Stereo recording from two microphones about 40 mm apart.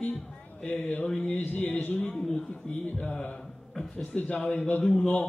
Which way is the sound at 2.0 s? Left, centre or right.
Centre.